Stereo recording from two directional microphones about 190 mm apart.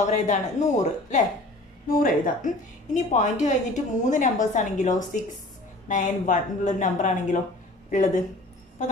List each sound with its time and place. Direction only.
0.0 s a woman's voice: 40° left (ahead or behind)